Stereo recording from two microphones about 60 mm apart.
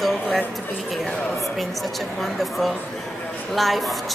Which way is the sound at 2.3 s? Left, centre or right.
Centre.